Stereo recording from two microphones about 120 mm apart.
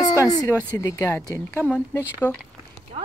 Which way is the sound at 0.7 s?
25° left (ahead or behind).